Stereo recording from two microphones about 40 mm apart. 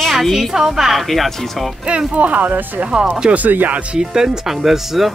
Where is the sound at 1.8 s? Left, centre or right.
Right.